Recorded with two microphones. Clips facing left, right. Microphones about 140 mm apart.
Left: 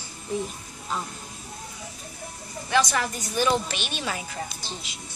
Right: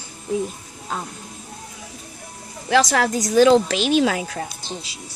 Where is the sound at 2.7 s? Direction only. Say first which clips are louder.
Right 6 dB; 90° right.